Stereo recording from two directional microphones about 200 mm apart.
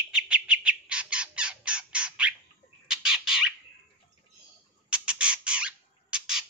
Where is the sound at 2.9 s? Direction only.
5° right (ahead or behind).